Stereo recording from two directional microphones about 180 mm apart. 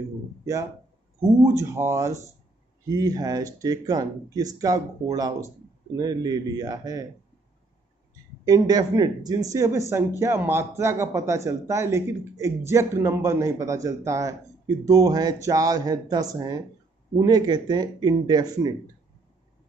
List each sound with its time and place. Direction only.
1.4 s speech: 15° right (ahead or behind)
8.5 s speech: 20° right (ahead or behind)